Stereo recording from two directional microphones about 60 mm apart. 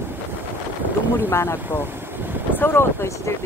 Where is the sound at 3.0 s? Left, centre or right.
Left.